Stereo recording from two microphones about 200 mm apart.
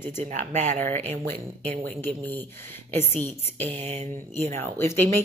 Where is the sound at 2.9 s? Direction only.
10° left (ahead or behind).